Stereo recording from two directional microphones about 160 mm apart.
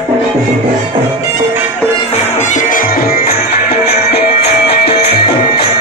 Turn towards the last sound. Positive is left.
turn(degrees=85)